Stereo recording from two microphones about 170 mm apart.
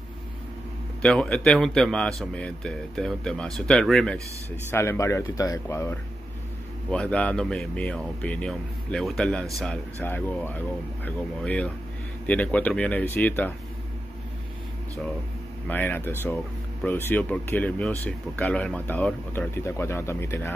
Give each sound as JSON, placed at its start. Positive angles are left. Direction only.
{"t": 1.0, "sound": "speech", "side_deg": 5}
{"t": 4.6, "sound": "speech", "side_deg": 15}
{"t": 15.7, "sound": "speech", "side_deg": 10}